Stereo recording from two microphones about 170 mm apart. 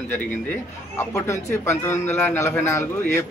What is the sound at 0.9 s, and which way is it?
A man's voice, 15° left (ahead or behind).